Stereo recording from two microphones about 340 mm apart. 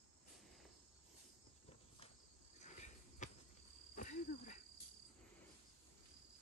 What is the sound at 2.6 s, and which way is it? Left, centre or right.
Cricket, centre.